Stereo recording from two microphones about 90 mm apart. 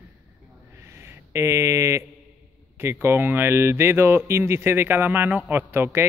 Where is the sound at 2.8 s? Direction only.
25° right (ahead or behind).